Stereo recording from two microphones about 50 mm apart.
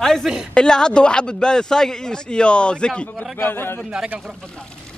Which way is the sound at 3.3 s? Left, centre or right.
Left.